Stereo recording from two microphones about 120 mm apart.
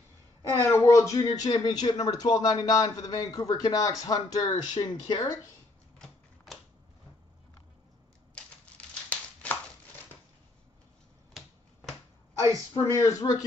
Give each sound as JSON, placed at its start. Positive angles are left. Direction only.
{"t": 0.4, "sound": "speech", "side_deg": 25}
{"t": 5.9, "sound": "typewriter", "side_deg": 0}
{"t": 8.4, "sound": "typewriter", "side_deg": 10}
{"t": 13.0, "sound": "speech", "side_deg": 30}